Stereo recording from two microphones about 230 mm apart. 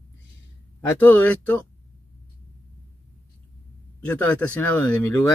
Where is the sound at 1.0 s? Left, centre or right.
Centre.